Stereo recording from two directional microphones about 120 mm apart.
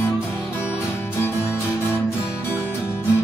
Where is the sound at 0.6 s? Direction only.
20° left (ahead or behind).